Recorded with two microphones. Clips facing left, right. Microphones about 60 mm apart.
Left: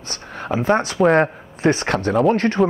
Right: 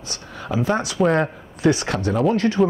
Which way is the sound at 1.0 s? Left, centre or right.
Left.